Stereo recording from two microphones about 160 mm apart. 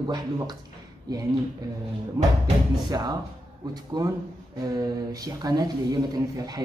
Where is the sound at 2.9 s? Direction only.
25° right (ahead or behind).